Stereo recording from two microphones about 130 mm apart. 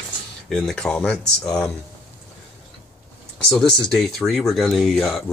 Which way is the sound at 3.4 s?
5° left (ahead or behind).